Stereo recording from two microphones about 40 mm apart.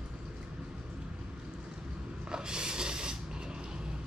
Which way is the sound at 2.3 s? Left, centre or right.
Centre.